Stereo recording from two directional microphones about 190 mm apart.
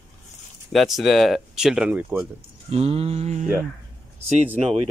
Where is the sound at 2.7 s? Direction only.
30° right (ahead or behind).